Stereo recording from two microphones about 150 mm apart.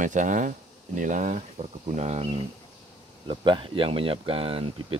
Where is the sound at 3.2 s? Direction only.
30° right (ahead or behind).